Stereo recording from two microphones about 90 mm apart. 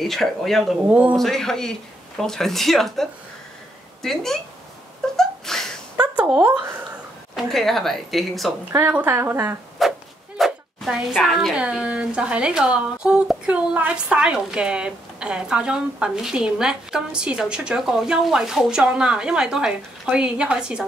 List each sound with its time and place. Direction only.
0.0 s speech: centre (ahead or behind)
0.8 s a woman's voice: 15° right (ahead or behind)
1.1 s speech: 5° left (ahead or behind)
5.1 s a sound: 5° left (ahead or behind)
6.1 s speech: 15° right (ahead or behind)
7.3 s speech: 5° left (ahead or behind)
8.8 s a woman's voice: 20° right (ahead or behind)
9.8 s a woman's voice: centre (ahead or behind)